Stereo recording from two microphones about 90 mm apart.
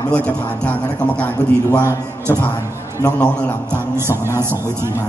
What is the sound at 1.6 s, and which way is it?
Speech, 35° left (ahead or behind).